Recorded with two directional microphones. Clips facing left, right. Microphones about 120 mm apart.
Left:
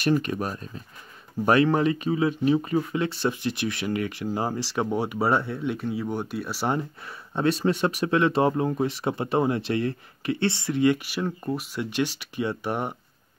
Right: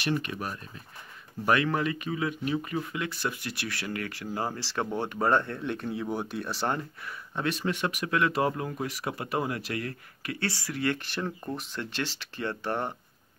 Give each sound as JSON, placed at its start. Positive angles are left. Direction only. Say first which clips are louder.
{"t": 0.0, "sound": "speech", "louder": "left 6 dB", "side_deg": 40}
{"t": 6.8, "sound": "speech", "louder": "left 4 dB", "side_deg": 25}
{"t": 11.0, "sound": "speech", "louder": "left 4 dB", "side_deg": 5}